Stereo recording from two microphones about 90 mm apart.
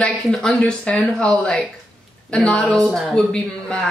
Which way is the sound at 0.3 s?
5° left (ahead or behind).